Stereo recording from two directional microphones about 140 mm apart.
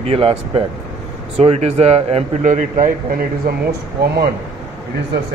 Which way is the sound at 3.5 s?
90° right.